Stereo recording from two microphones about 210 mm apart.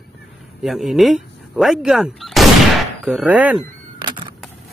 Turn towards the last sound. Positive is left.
turn(degrees=-20)  # may be behind; listen again after turning